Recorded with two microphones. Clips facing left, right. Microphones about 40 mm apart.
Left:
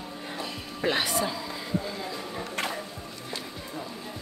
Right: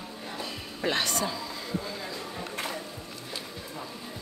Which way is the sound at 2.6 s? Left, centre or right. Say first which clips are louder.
Left 4 dB; left.